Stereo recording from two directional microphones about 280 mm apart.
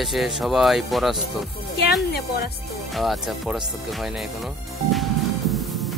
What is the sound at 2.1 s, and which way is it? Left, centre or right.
Speech, left.